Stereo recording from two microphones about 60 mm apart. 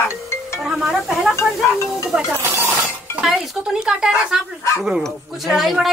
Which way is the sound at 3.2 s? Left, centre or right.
Centre.